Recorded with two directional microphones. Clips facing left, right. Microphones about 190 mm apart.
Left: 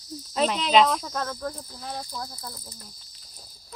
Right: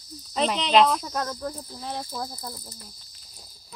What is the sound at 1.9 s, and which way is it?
Speech, 20° right (ahead or behind).